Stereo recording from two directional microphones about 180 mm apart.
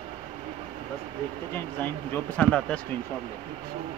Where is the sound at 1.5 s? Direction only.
10° left (ahead or behind).